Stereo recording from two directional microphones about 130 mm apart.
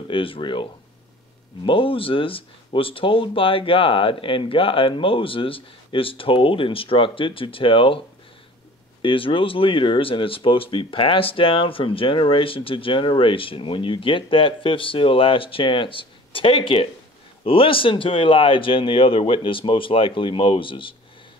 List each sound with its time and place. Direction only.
0.1 s speech: 40° left (ahead or behind)
9.0 s speech: 40° left (ahead or behind)